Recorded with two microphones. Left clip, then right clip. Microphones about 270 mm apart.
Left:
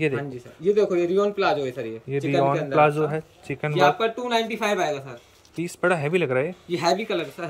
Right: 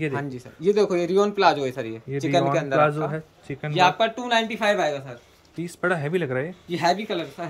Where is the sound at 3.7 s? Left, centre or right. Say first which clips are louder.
Right 1 dB; centre.